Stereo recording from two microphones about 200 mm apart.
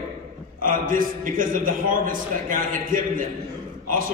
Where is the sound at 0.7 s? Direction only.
45° right (ahead or behind).